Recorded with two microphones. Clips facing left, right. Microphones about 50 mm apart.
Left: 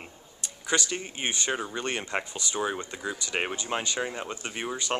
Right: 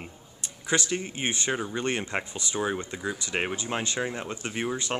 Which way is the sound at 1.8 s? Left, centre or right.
Centre.